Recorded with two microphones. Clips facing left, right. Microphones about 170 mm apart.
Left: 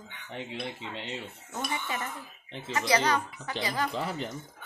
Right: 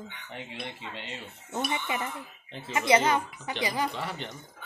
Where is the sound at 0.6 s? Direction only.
30° left (ahead or behind).